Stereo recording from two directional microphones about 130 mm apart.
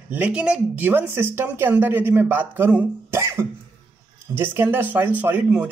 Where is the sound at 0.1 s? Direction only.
10° right (ahead or behind).